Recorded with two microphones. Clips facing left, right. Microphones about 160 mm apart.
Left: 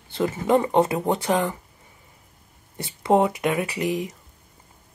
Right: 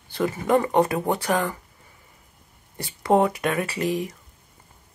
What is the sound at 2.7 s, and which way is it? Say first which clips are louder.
Speech: even; 20° left (ahead or behind).